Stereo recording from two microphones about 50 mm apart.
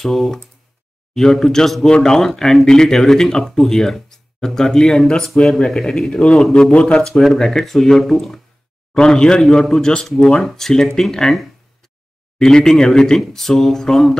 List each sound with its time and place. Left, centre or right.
0.0 s speech: centre; by 6.4 s left
6.4 s speech: centre
8.9 s speech: centre